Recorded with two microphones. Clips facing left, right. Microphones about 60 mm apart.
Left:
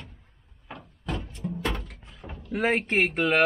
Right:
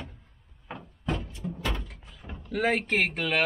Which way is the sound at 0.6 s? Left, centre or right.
Right.